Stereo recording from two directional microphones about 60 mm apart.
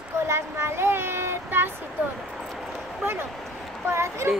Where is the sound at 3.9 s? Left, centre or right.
Right.